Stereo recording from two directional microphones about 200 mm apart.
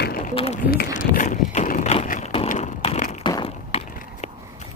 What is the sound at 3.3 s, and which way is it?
Vehicle, 25° left (ahead or behind).